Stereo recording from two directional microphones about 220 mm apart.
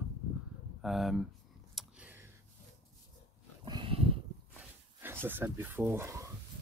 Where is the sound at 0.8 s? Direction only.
Centre (ahead or behind).